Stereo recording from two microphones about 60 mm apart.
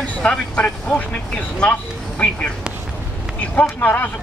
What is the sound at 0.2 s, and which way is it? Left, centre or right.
Speech, left.